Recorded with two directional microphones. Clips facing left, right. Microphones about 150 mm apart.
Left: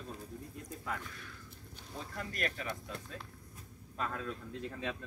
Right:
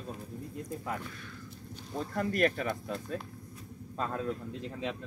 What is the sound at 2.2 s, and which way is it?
Speech, 50° right (ahead or behind).